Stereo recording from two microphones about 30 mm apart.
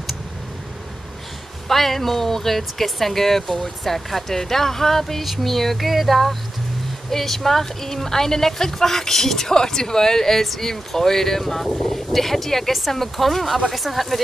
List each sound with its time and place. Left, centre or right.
1.7 s speech: centre